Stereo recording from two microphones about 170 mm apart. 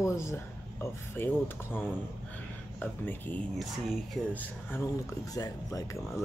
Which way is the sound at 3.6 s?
Centre (ahead or behind).